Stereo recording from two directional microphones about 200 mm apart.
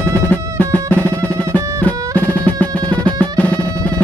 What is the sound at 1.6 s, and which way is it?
Music, 15° right (ahead or behind).